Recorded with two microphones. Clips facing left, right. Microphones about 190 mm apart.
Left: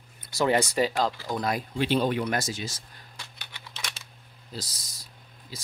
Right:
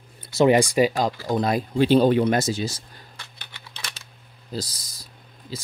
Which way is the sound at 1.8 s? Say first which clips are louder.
Right 9 dB; 35° right (ahead or behind).